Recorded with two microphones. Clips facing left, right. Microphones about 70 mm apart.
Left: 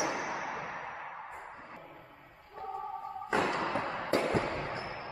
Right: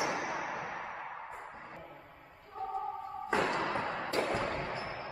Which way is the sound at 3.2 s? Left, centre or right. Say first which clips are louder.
Left 1 dB; centre.